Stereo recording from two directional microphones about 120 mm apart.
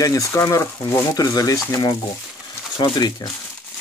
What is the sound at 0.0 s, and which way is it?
Speech, 25° left (ahead or behind).